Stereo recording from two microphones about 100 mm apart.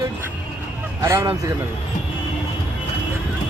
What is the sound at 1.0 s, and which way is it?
Speech, 30° right (ahead or behind).